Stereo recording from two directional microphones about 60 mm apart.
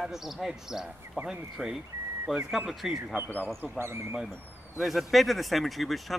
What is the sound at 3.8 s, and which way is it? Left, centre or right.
Speech, right.